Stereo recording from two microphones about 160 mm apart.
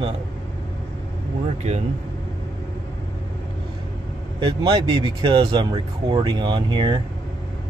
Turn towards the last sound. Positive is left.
turn(degrees=-30)  # may be behind; listen again after turning